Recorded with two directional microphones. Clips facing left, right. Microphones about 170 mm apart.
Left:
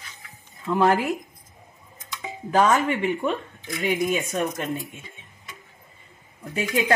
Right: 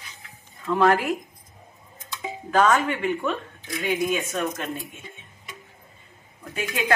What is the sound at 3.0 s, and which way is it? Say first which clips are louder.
Speech: left 1 dB; 30° left (ahead or behind).